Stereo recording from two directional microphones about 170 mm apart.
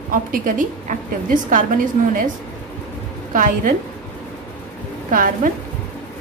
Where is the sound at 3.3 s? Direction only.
50° right (ahead or behind).